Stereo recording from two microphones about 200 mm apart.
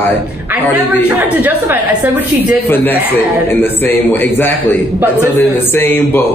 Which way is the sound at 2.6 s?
10° left (ahead or behind).